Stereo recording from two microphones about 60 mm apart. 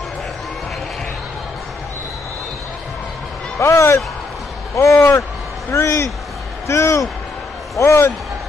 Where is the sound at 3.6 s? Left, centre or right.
Left.